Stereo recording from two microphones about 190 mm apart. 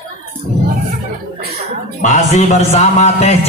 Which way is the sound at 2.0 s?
40° left (ahead or behind).